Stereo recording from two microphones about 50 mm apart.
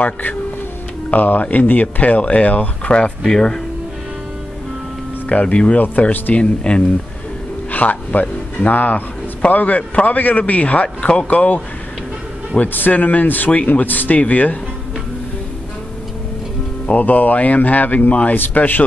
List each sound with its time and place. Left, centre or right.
0.0 s a man's voice: left
3.3 s speech: centre
5.3 s speech: left
6.3 s speech: left
7.7 s a man's voice: left
11.3 s a man's voice: left
16.8 s a man's voice: left